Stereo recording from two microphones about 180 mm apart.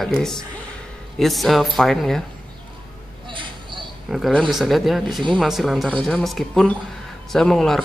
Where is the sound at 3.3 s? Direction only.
25° right (ahead or behind).